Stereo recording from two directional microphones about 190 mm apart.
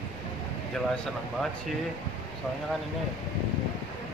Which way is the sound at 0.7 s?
5° left (ahead or behind).